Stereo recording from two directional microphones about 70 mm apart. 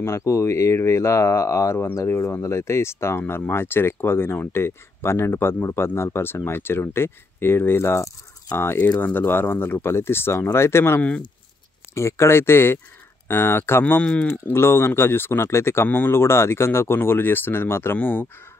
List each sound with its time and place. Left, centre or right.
0.0 s speech: left
8.7 s speech: left
11.0 s speech: centre
11.9 s speech: left